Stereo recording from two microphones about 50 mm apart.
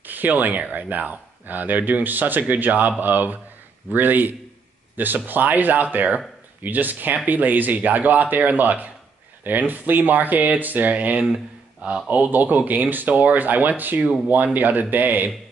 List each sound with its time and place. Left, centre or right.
0.0 s speech: right